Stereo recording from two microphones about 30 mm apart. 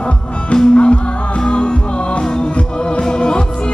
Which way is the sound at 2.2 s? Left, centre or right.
Left.